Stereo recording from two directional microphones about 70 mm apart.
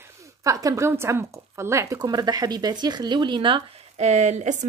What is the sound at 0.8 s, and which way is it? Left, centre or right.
Speech, right.